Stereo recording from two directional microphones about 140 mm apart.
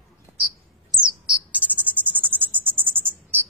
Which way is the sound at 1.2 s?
10° right (ahead or behind).